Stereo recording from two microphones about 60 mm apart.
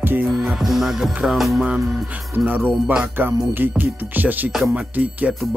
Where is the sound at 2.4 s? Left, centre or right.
Right.